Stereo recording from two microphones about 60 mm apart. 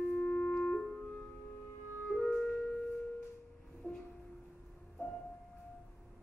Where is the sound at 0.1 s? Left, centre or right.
Centre.